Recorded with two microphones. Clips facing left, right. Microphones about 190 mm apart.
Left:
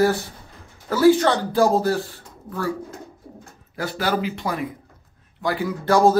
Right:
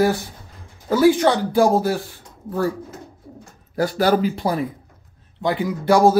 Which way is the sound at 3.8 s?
40° right (ahead or behind).